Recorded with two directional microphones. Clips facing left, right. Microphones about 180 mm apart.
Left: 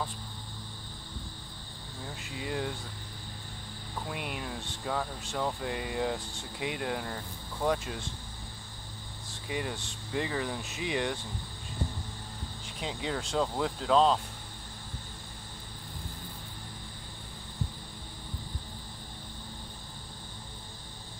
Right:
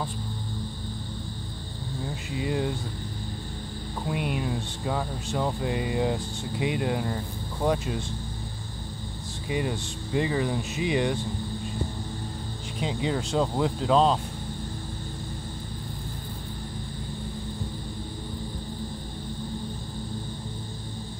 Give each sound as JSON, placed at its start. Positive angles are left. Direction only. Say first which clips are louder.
{"t": 2.4, "sound": "speech", "louder": "right 6 dB", "side_deg": -10}
{"t": 4.1, "sound": "speech", "louder": "right 10 dB", "side_deg": -5}
{"t": 9.5, "sound": "speech", "louder": "right 6 dB", "side_deg": -5}
{"t": 12.8, "sound": "speech", "louder": "right 6 dB", "side_deg": -5}